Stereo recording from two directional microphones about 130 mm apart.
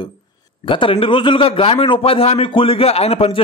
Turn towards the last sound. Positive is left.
turn(degrees=50)  # may be behind; listen again after turning